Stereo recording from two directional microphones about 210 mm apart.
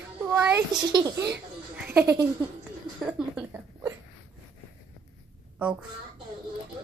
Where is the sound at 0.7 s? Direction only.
20° right (ahead or behind).